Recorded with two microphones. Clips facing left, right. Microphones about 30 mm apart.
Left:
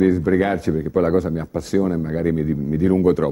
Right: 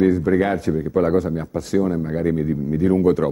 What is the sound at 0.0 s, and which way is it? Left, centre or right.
Speech, centre.